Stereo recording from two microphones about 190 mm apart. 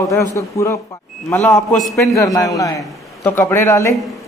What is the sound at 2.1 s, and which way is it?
A man's voice, 15° left (ahead or behind).